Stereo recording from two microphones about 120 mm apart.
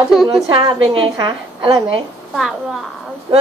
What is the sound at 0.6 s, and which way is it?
A woman's voice, 40° right (ahead or behind).